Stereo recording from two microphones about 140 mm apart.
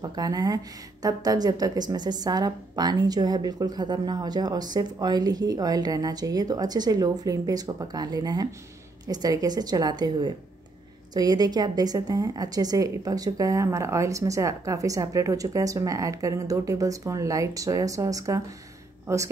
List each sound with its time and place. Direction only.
0.0 s a woman's voice: 30° right (ahead or behind)